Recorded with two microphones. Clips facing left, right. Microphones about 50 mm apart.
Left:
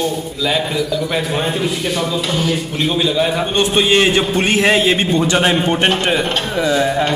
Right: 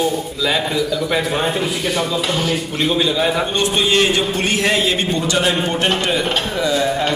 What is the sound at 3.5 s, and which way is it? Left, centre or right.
A man's voice, left.